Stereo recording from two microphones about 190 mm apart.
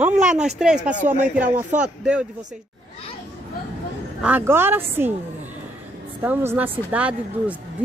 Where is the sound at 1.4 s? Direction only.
45° right (ahead or behind).